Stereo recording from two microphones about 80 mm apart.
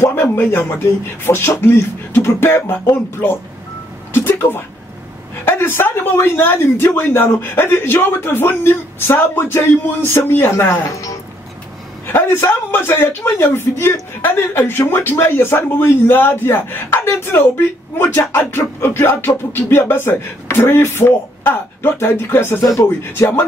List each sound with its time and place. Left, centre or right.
0.0 s a sound: left
1.2 s speech: left
4.1 s music: left
5.4 s a man's voice: left
12.1 s a man's voice: left